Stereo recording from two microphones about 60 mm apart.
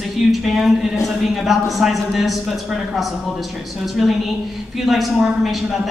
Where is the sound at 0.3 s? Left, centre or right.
Centre.